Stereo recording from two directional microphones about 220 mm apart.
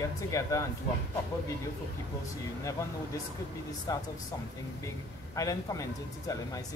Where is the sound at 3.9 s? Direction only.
15° left (ahead or behind).